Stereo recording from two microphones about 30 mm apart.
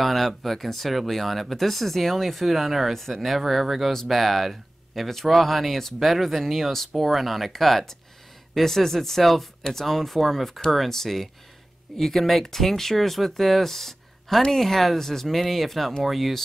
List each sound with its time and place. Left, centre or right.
0.0 s speech: centre
5.9 s speech: centre